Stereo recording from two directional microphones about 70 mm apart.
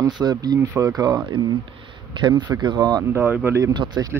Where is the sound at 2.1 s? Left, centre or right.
Right.